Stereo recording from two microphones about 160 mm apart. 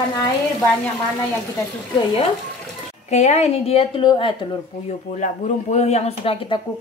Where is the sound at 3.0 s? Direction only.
45° left (ahead or behind).